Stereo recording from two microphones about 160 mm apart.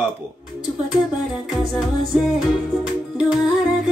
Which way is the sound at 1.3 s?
Centre (ahead or behind).